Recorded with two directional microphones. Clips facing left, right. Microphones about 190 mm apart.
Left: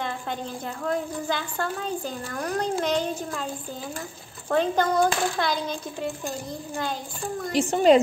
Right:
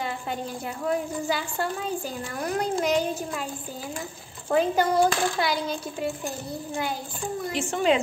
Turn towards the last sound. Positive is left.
turn(degrees=40)  # may be behind; listen again after turning